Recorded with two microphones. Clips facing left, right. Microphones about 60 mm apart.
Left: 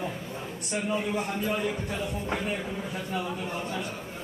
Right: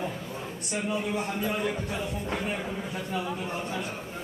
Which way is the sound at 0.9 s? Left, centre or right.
Centre.